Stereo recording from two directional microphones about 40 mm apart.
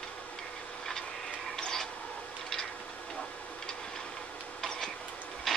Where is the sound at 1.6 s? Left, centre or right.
Centre.